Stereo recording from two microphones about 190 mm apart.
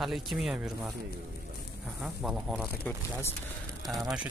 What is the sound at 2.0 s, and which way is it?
Speech, 5° right (ahead or behind).